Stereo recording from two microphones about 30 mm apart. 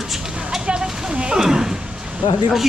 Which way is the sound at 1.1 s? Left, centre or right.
Right.